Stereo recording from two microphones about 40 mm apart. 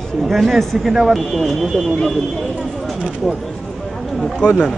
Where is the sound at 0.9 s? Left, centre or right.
Centre.